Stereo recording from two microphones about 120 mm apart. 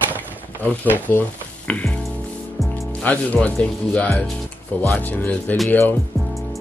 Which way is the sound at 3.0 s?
15° left (ahead or behind).